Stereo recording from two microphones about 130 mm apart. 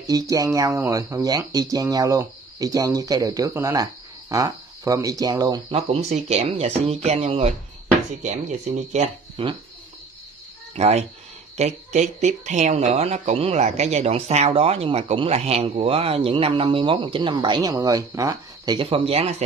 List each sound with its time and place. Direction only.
0.0 s speech: 25° right (ahead or behind)
5.7 s speech: 50° right (ahead or behind)
8.2 s speech: 65° right (ahead or behind)
9.4 s speech: 40° right (ahead or behind)
10.7 s speech: 55° right (ahead or behind); by 18.8 s 25° right (ahead or behind)
18.8 s speech: 45° right (ahead or behind)